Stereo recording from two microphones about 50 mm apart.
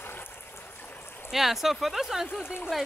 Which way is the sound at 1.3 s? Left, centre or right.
Centre.